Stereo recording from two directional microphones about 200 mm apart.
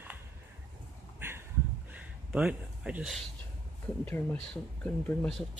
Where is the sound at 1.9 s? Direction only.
5° right (ahead or behind).